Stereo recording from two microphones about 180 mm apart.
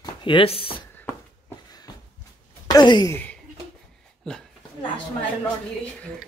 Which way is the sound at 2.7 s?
25° left (ahead or behind).